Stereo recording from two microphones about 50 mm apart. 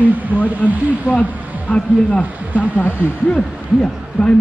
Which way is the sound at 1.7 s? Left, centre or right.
Left.